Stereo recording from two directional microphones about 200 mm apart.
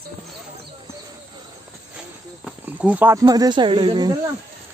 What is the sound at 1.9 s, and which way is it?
Speech, 5° right (ahead or behind).